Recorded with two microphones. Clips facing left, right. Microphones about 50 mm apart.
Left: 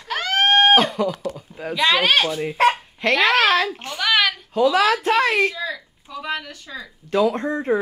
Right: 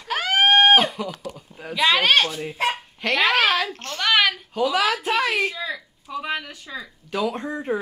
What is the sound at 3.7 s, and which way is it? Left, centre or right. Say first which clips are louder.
Speech: left 1 dB; centre.